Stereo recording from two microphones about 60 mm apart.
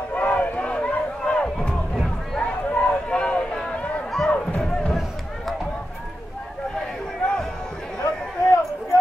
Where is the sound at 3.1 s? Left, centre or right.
Centre.